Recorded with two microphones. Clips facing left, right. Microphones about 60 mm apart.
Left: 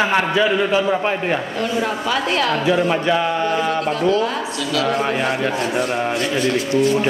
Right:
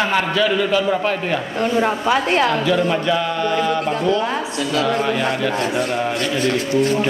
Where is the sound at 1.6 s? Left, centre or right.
Right.